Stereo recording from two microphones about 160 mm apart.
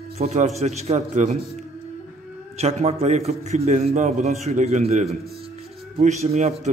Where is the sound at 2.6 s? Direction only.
40° right (ahead or behind).